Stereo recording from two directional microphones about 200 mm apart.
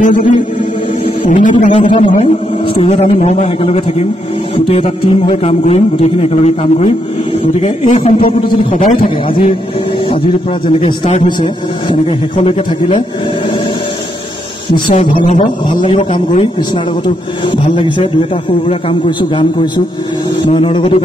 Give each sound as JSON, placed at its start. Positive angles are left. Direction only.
{"t": 0.0, "sound": "a man's voice", "side_deg": 40}
{"t": 10.8, "sound": "a man's voice", "side_deg": 30}
{"t": 14.9, "sound": "a man's voice", "side_deg": 30}